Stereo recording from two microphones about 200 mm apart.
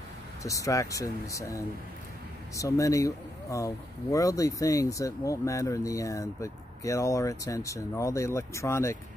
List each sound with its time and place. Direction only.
0.4 s speech: 15° left (ahead or behind)